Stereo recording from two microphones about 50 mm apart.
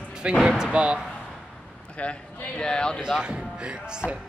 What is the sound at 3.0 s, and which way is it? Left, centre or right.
Speech, centre.